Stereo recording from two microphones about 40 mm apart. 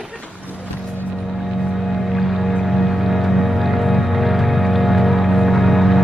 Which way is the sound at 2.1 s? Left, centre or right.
Centre.